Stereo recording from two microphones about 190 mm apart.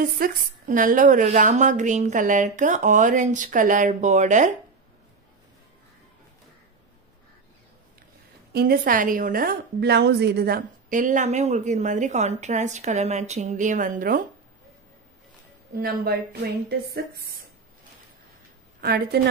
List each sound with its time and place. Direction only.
0.2 s a woman's voice: 45° right (ahead or behind)
8.5 s a woman's voice: 50° right (ahead or behind)
15.7 s a woman's voice: 50° right (ahead or behind)
18.8 s a woman's voice: 55° right (ahead or behind)